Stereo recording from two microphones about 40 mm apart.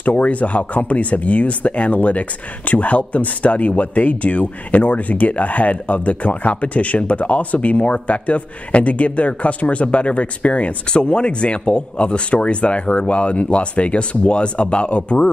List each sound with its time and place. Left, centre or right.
0.0 s speech: left